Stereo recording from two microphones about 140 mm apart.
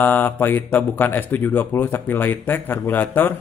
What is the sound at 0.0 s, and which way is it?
A man's voice, 15° left (ahead or behind).